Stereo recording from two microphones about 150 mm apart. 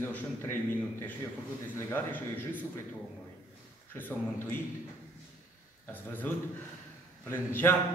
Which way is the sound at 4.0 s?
15° left (ahead or behind).